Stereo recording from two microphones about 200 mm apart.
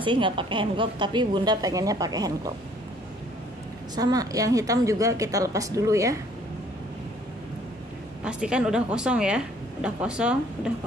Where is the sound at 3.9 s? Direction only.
20° right (ahead or behind).